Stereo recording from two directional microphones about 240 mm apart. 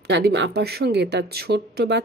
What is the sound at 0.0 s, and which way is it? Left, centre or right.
Speech, right.